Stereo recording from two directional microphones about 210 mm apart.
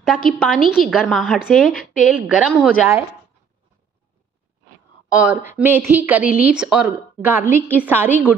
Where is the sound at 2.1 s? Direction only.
5° right (ahead or behind).